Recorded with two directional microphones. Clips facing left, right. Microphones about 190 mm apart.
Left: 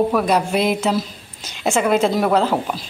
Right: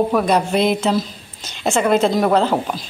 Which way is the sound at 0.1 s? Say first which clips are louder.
Right 1 dB; 5° left (ahead or behind).